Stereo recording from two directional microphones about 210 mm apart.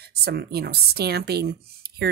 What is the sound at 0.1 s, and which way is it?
Speech, 50° right (ahead or behind).